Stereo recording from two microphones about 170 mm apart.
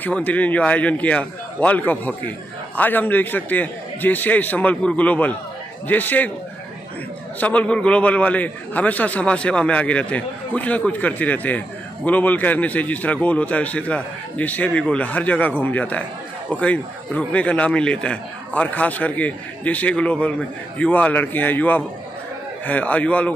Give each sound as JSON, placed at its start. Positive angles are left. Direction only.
{"t": 0.0, "sound": "a man's voice", "side_deg": 10}
{"t": 7.3, "sound": "a man's voice", "side_deg": 10}